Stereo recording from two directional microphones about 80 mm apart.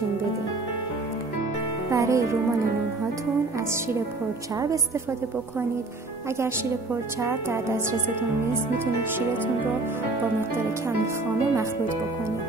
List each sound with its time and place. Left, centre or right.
1.9 s speech: right
7.2 s speech: right